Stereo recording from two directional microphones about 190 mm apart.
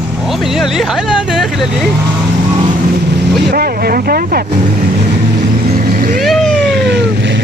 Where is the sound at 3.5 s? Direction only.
55° right (ahead or behind).